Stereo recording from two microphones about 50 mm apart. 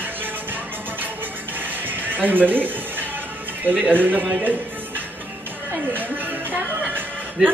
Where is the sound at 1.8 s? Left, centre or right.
Right.